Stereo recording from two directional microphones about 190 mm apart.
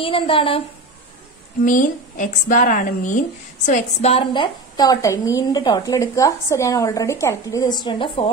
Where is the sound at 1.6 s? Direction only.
40° left (ahead or behind).